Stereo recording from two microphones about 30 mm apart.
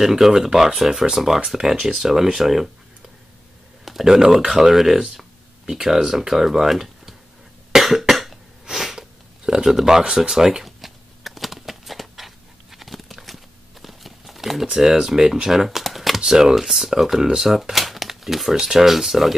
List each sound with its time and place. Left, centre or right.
0.0 s speech: centre
3.9 s a sound: centre
4.5 s speech: centre
7.7 s cough: centre
8.7 s sniff: centre
9.5 s speech: centre
10.6 s a sound: centre
14.7 s speech: centre
15.8 s computer keyboard: centre
16.2 s speech: right
16.5 s speech: centre